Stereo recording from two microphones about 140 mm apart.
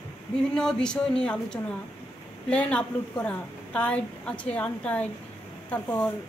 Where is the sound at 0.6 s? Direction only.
5° left (ahead or behind).